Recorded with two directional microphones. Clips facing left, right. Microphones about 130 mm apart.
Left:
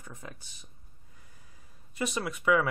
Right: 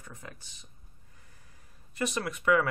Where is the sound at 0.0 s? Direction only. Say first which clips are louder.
Left 1 dB; 20° left (ahead or behind).